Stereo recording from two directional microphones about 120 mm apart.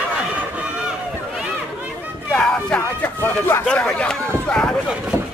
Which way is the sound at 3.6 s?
10° left (ahead or behind).